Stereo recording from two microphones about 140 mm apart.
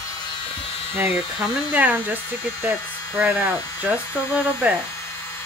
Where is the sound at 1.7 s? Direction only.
15° right (ahead or behind).